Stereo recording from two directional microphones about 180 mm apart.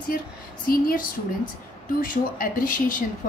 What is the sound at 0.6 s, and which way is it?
Speech, 50° left (ahead or behind).